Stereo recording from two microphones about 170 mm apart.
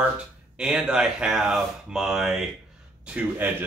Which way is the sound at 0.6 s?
5° right (ahead or behind).